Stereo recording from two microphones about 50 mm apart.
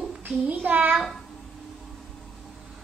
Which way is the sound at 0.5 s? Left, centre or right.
Right.